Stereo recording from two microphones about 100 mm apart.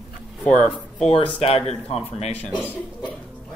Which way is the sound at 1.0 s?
85° left.